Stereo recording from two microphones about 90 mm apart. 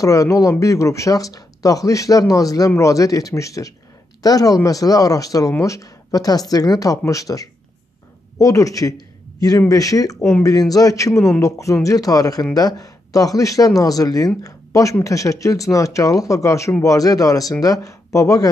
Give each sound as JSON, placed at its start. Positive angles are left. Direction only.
{"t": 0.0, "sound": "speech", "side_deg": 40}